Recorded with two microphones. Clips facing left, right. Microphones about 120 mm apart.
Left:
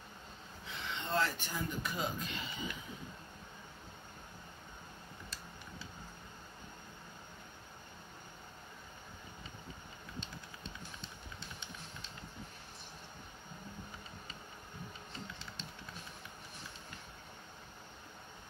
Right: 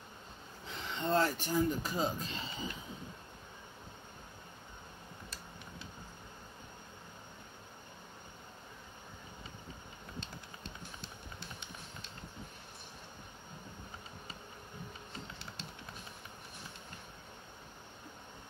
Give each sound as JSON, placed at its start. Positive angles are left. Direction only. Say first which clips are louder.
{"t": 0.8, "sound": "speech", "louder": "right 4 dB", "side_deg": -40}